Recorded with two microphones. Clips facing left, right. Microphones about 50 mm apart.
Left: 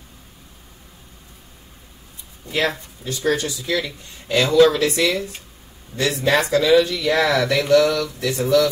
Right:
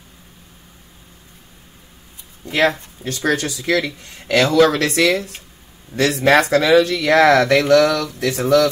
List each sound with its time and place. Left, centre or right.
2.4 s speech: right
6.4 s speech: right